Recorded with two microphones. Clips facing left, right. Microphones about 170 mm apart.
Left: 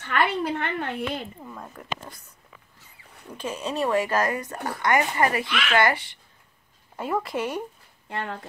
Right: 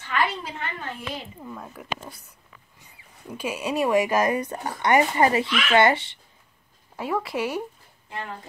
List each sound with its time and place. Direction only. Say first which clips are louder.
0.0 s a woman's voice: left 2 dB; 60° left (ahead or behind)
1.4 s speech: right 2 dB; centre (ahead or behind); by 6.1 s 25° right (ahead or behind)
7.0 s speech: even; centre (ahead or behind)
8.1 s a woman's voice: left 3 dB; 65° left (ahead or behind)